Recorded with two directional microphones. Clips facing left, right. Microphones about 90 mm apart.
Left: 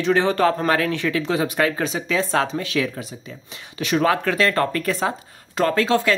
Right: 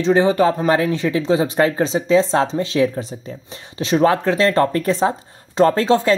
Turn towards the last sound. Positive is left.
turn(degrees=-30)  # may be behind; listen again after turning